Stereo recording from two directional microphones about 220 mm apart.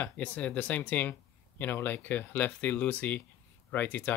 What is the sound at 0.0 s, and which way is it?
Speech, 5° left (ahead or behind).